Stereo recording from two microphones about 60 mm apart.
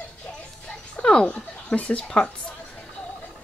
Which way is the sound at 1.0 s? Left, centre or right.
Centre.